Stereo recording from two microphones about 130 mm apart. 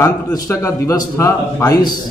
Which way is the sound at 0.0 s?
20° left (ahead or behind).